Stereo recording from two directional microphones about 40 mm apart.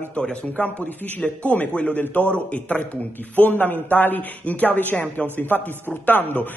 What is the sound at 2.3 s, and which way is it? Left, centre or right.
Speech, left.